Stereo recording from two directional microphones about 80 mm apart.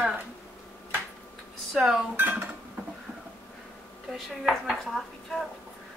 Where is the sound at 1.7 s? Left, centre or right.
Centre.